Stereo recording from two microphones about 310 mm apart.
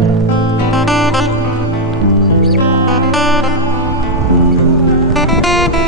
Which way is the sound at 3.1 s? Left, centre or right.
Centre.